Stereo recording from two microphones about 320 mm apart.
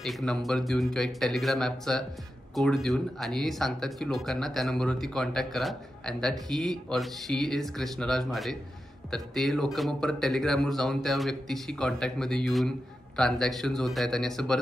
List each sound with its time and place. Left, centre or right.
0.0 s speech: centre